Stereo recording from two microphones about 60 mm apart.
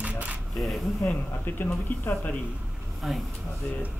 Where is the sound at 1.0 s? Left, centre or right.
Left.